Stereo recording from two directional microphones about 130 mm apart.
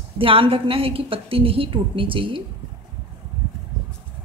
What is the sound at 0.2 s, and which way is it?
A woman's voice, 45° right (ahead or behind).